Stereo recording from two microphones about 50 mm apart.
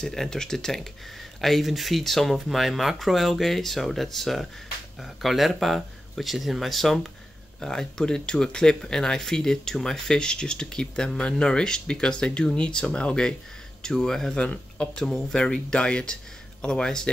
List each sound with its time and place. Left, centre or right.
0.0 s speech: centre
14.4 s speech: left